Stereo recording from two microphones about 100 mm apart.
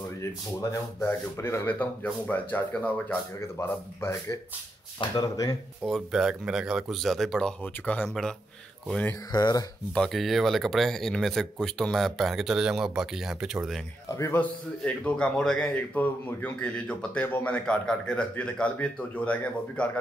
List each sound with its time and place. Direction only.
0.2 s a man's voice: 30° left (ahead or behind)
3.3 s speech: 25° left (ahead or behind)
5.1 s speech: 40° left (ahead or behind)
5.9 s speech: centre (ahead or behind)
9.3 s speech: 40° left (ahead or behind)
9.9 s speech: 5° left (ahead or behind)
14.0 s a man's voice: 30° left (ahead or behind)
14.3 s a man's voice: 15° left (ahead or behind)